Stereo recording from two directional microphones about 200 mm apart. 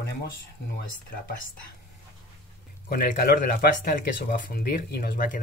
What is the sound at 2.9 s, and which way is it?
Speech, 50° left (ahead or behind).